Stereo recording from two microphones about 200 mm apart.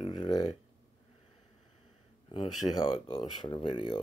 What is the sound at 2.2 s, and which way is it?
Speech, 25° left (ahead or behind).